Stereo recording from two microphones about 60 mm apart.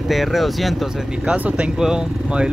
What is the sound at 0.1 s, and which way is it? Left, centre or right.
Speech, centre.